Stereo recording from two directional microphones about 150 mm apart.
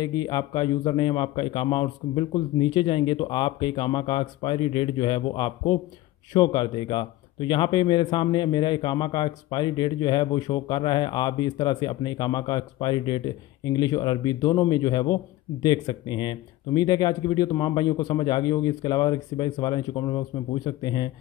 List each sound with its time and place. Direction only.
0.0 s a man's voice: 25° left (ahead or behind)